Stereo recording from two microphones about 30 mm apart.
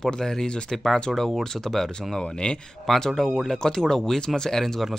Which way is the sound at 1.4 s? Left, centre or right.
Centre.